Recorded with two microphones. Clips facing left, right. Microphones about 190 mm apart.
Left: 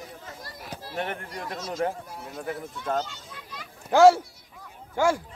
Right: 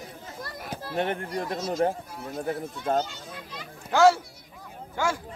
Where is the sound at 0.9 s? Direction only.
30° right (ahead or behind).